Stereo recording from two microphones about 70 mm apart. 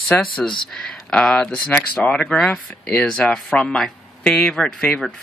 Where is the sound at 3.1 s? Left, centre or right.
Centre.